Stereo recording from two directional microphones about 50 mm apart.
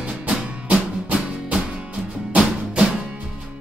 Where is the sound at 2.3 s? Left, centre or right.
Right.